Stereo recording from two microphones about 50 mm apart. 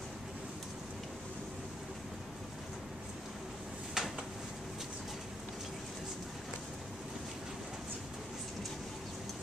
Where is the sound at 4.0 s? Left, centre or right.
Centre.